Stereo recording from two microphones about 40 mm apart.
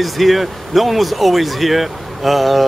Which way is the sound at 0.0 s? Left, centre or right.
Centre.